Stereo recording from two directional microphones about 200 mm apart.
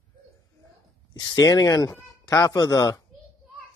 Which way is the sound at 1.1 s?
20° left (ahead or behind).